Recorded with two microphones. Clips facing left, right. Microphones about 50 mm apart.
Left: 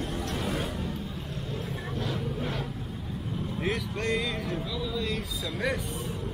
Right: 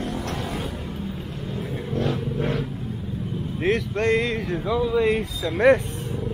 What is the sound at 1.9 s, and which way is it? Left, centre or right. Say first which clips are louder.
Vehicle: right 8 dB; right.